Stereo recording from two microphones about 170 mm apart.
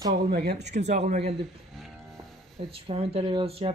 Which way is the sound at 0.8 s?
45° right (ahead or behind).